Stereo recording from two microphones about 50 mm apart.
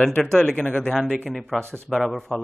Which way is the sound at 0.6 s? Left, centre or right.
Left.